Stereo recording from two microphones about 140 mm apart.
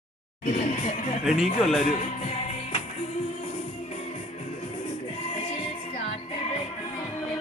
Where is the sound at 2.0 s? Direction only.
50° left (ahead or behind).